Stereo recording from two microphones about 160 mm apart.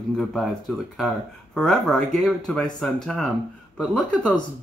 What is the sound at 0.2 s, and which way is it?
Speech, centre (ahead or behind).